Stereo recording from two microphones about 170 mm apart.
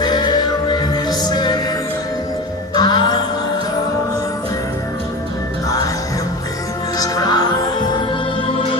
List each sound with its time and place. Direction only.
0.0 s music: 25° left (ahead or behind)
2.7 s music: 25° left (ahead or behind)
7.0 s music: 25° left (ahead or behind)